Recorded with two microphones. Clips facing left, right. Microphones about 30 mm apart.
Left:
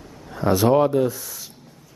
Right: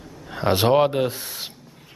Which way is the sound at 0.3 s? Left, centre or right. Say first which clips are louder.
Left 1 dB; right.